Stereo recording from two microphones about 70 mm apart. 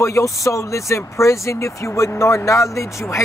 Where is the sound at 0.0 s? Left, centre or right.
Left.